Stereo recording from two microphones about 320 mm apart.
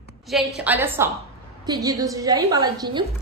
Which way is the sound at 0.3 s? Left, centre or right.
Centre.